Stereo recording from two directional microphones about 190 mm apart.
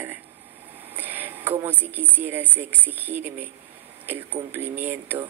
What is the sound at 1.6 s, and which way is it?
A woman's voice, 10° right (ahead or behind).